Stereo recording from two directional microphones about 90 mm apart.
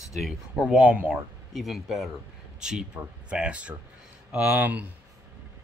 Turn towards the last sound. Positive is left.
turn(degrees=-15)  # may be behind; listen again after turning